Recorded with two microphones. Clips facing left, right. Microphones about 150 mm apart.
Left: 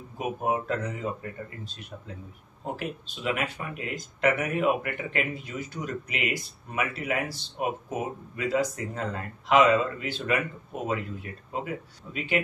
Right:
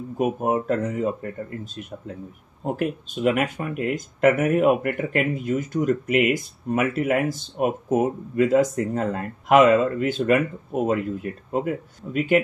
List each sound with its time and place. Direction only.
0.2 s speech: 45° right (ahead or behind)